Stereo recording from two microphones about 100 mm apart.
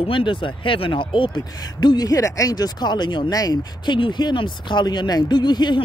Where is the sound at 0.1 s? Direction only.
55° left (ahead or behind).